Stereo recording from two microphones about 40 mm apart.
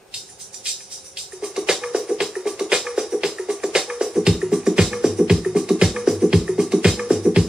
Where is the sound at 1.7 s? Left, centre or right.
Centre.